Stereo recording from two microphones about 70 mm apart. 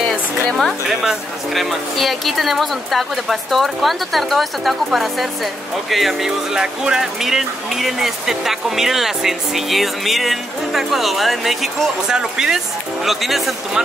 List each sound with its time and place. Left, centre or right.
0.5 s speech: centre